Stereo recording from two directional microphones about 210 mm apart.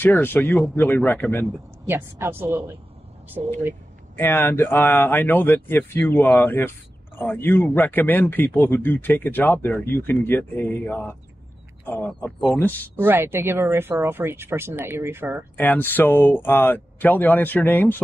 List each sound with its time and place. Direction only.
0.0 s a man's voice: 10° left (ahead or behind)
1.9 s speech: 10° right (ahead or behind)
3.4 s speech: 40° right (ahead or behind)
4.2 s a man's voice: 10° left (ahead or behind)
13.0 s speech: 10° right (ahead or behind)
15.5 s a man's voice: 10° left (ahead or behind)